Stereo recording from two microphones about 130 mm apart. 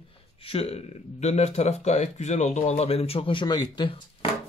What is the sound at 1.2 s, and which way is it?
Speech, 60° left (ahead or behind).